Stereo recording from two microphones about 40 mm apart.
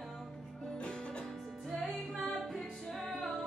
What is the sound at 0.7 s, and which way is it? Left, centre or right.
Music, left.